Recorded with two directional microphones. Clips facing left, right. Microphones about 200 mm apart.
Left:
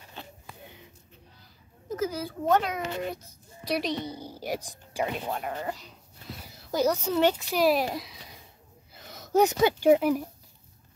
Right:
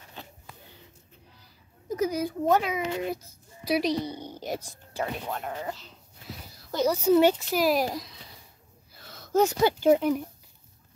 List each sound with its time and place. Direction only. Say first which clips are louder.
2.0 s a child's voice: right 4 dB; 15° right (ahead or behind); by 5.4 s 15° left (ahead or behind)
5.4 s a woman's voice: left 1 dB; 5° left (ahead or behind)
8.9 s a sound: left 1 dB; 15° left (ahead or behind)
9.8 s speech: left 1 dB; 5° left (ahead or behind)